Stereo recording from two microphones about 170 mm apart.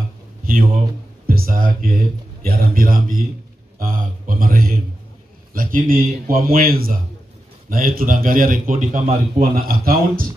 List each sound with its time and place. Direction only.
1.2 s speech: 60° right (ahead or behind)